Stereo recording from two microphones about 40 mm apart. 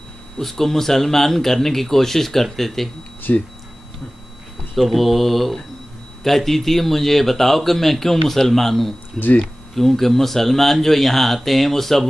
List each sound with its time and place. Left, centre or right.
0.4 s speech: centre
3.3 s speech: left
4.7 s speech: centre